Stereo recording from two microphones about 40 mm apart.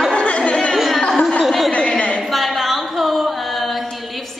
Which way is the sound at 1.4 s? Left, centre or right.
Centre.